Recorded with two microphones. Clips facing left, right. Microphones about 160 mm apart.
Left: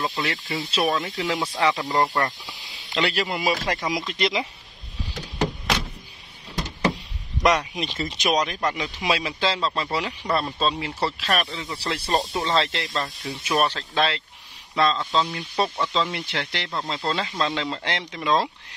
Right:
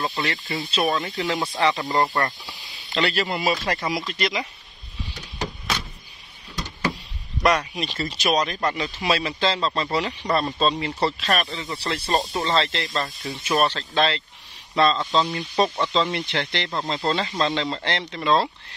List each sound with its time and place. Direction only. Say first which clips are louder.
0.0 s speech: even; centre (ahead or behind)
2.5 s speech: right 1 dB; 15° left (ahead or behind)
4.1 s speech: left 1 dB; 25° left (ahead or behind)
7.4 s speech: even; 20° left (ahead or behind)